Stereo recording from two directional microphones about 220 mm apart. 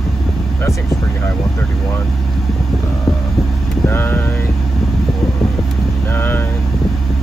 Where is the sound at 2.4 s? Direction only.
Centre (ahead or behind).